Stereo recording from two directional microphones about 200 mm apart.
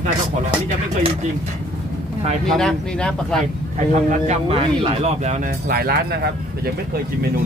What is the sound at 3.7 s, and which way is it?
Speech, 35° right (ahead or behind).